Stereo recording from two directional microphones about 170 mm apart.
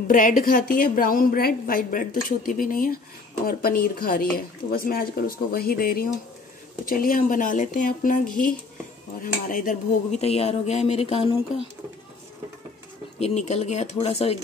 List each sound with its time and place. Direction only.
0.1 s a woman's voice: 50° left (ahead or behind)
10.2 s speech: 35° left (ahead or behind)
13.2 s speech: 40° left (ahead or behind)